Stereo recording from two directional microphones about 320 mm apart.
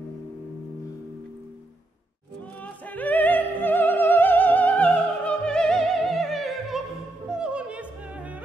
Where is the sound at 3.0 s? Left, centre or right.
Centre.